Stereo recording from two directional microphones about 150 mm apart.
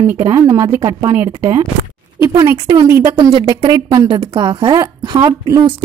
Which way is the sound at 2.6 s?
35° right (ahead or behind).